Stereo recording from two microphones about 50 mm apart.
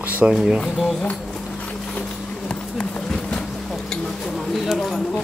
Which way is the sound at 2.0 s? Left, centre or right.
Left.